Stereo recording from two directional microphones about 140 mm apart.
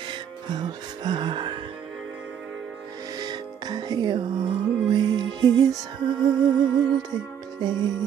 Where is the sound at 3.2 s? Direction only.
30° right (ahead or behind).